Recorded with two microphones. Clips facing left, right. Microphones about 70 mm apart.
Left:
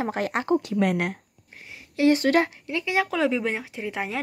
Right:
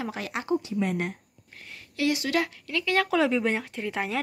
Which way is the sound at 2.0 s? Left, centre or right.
Left.